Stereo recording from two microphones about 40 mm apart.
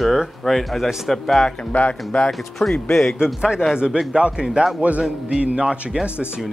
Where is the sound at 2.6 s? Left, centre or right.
Centre.